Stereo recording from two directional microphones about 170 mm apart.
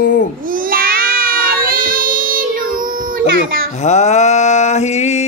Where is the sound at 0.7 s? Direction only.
60° right (ahead or behind).